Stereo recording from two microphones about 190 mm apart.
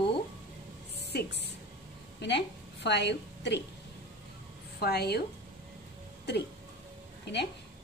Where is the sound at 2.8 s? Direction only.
65° left (ahead or behind).